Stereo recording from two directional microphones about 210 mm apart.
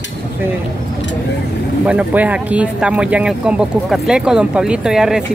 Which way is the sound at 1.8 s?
5° right (ahead or behind).